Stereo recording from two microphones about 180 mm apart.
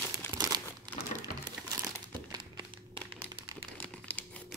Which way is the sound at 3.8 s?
10° left (ahead or behind).